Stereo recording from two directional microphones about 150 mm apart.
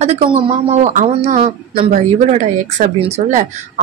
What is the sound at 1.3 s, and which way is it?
Speech, 65° right (ahead or behind).